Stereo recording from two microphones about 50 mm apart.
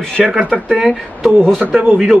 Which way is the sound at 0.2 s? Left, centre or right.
Centre.